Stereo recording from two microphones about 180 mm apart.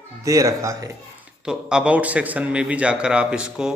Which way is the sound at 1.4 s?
5° right (ahead or behind).